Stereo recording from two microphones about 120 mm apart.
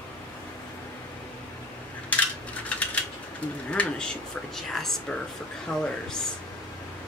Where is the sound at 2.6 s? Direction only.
10° left (ahead or behind).